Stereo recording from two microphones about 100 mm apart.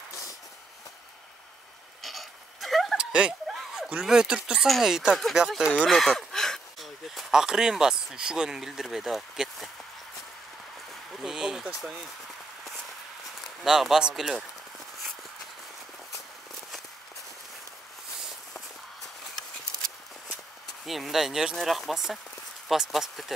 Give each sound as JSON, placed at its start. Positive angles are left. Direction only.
{"t": 0.1, "sound": "vehicle", "side_deg": 35}
{"t": 2.0, "sound": "a sound", "side_deg": 0}
{"t": 3.0, "sound": "a sound", "side_deg": -10}
{"t": 4.0, "sound": "speech", "side_deg": -5}
{"t": 5.9, "sound": "a sound", "side_deg": 0}
{"t": 8.1, "sound": "speech", "side_deg": -5}
{"t": 11.1, "sound": "speech", "side_deg": -5}
{"t": 13.7, "sound": "speech", "side_deg": -5}
{"t": 20.8, "sound": "speech", "side_deg": 0}